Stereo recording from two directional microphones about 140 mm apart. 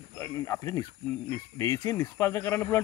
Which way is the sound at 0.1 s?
20° left (ahead or behind).